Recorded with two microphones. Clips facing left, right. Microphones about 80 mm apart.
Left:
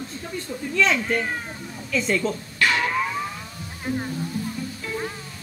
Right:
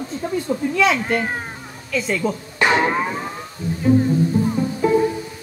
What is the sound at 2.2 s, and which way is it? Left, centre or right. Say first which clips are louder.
Music: right 4 dB; centre.